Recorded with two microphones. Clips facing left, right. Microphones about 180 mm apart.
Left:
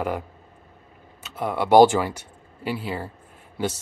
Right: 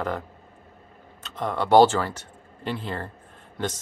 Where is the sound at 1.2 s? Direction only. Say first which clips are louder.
Left 2 dB; 10° left (ahead or behind).